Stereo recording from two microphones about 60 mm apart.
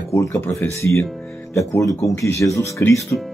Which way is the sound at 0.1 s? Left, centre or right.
Left.